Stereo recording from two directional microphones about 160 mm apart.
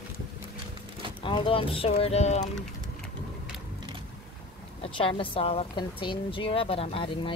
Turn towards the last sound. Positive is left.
turn(degrees=35)  # may be behind; listen again after turning